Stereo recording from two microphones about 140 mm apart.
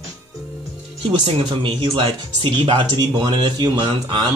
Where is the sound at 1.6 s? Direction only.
35° right (ahead or behind).